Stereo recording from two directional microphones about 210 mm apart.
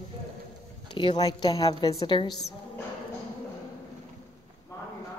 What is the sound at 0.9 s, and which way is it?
A woman's voice, 20° left (ahead or behind).